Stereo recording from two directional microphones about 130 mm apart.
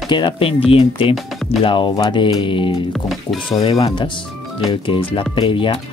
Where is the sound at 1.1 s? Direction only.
Centre (ahead or behind).